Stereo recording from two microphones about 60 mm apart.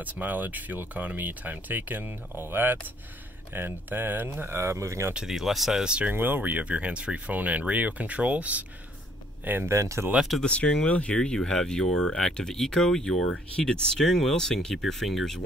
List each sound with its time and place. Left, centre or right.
0.0 s speech: right
5.1 s speech: centre
6.1 s speech: right
6.6 s speech: centre
9.4 s speech: right
9.7 s speech: right
10.4 s speech: centre